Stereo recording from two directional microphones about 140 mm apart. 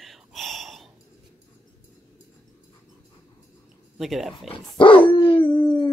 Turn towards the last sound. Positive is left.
turn(degrees=40)  # may be behind; listen again after turning